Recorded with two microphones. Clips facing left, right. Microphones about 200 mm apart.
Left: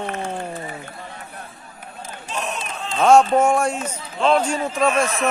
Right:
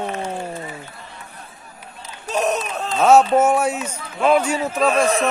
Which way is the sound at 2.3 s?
40° right (ahead or behind).